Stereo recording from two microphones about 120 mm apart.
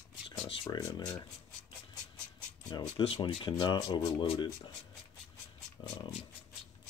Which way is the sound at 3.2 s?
50° left (ahead or behind).